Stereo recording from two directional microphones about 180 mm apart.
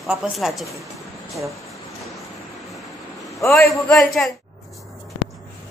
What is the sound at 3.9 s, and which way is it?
Speech, centre (ahead or behind).